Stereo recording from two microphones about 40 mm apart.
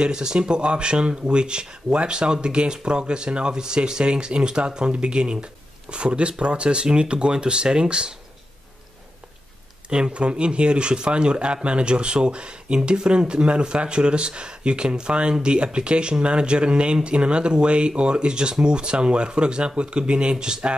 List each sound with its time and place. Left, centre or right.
0.0 s speech: centre
9.8 s speech: right